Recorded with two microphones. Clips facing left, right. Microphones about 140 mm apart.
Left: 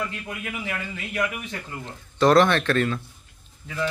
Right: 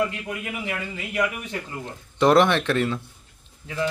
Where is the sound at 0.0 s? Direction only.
15° right (ahead or behind).